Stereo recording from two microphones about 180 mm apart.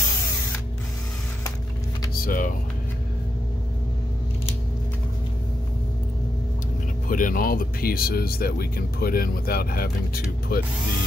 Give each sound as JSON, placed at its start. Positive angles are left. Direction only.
{"t": 2.2, "sound": "speech", "side_deg": 50}
{"t": 7.1, "sound": "speech", "side_deg": 50}